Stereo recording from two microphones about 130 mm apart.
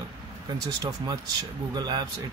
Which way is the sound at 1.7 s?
30° right (ahead or behind).